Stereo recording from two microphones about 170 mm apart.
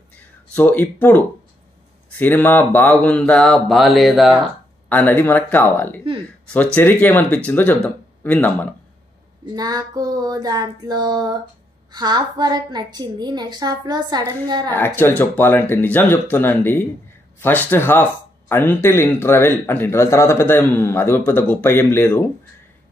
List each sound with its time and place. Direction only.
0.6 s a man's voice: 10° left (ahead or behind)
4.8 s a man's voice: 10° left (ahead or behind)
9.6 s a woman's voice: 25° right (ahead or behind)
15.0 s a man's voice: 10° left (ahead or behind)